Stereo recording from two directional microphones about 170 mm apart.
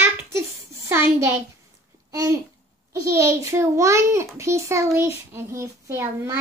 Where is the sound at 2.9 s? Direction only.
15° right (ahead or behind).